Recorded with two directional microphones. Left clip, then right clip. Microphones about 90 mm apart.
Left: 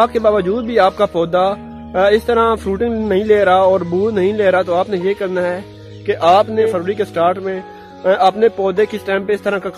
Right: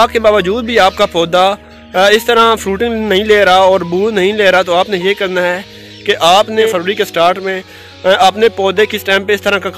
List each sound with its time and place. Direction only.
0.0 s a man's voice: 25° right (ahead or behind)